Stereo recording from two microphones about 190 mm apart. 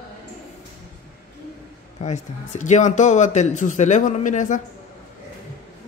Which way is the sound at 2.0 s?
40° left (ahead or behind).